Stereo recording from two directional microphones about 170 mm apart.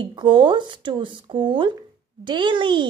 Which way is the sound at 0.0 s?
30° right (ahead or behind).